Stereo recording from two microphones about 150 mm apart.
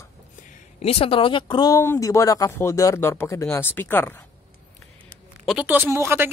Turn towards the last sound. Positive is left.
turn(degrees=-15)  # may be behind; listen again after turning